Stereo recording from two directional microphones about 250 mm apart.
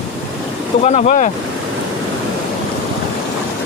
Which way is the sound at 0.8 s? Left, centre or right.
Left.